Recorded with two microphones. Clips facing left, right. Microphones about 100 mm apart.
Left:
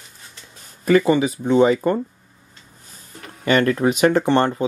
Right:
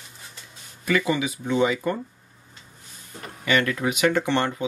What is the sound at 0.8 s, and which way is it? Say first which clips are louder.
Speech: left 8 dB; 40° left (ahead or behind).